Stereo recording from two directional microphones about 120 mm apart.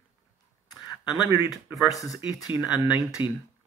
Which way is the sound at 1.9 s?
30° left (ahead or behind).